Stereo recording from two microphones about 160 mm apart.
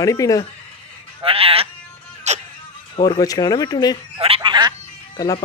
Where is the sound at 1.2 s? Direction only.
35° right (ahead or behind).